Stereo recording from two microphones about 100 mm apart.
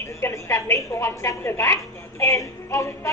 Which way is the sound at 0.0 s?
30° left (ahead or behind).